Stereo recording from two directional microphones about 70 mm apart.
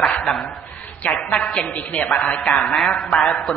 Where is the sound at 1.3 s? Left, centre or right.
Centre.